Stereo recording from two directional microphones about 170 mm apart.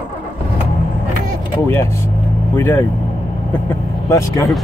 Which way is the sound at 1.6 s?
15° left (ahead or behind).